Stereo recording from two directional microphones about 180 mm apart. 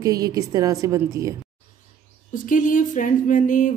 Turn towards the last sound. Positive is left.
turn(degrees=45)  # may be behind; listen again after turning